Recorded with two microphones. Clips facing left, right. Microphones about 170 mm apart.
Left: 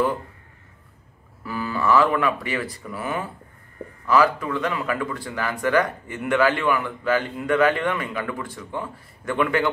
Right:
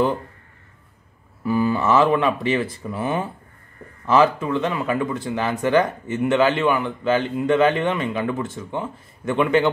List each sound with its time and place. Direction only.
1.4 s speech: 20° right (ahead or behind)